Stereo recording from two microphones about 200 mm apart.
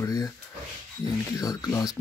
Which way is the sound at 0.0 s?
20° left (ahead or behind).